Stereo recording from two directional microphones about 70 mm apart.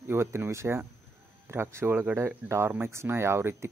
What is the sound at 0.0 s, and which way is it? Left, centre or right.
Speech, right.